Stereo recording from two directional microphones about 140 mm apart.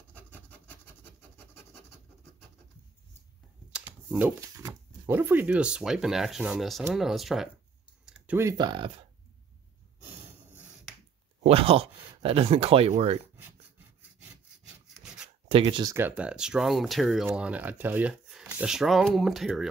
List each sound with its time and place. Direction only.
0.1 s rub: 10° left (ahead or behind)
3.7 s computer keyboard: 10° right (ahead or behind)
4.6 s speech: 20° right (ahead or behind); by 7.4 s centre (ahead or behind)
8.0 s a sound: 5° right (ahead or behind)
8.4 s speech: 20° right (ahead or behind)
8.6 s speech: 35° right (ahead or behind)
10.2 s a sound: 10° right (ahead or behind)
11.4 s speech: 45° right (ahead or behind)
13.4 s rub: 15° right (ahead or behind)
15.4 s speech: 40° right (ahead or behind)
15.9 s speech: 15° right (ahead or behind)